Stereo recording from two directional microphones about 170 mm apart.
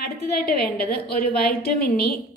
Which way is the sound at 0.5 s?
65° left (ahead or behind).